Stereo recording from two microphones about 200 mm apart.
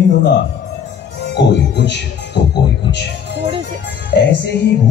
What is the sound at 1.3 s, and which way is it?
Speech, 60° left (ahead or behind).